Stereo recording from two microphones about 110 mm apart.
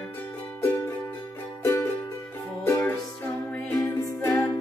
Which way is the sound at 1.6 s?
20° left (ahead or behind).